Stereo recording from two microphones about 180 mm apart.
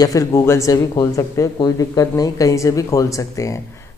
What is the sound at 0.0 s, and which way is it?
Speech, 20° left (ahead or behind).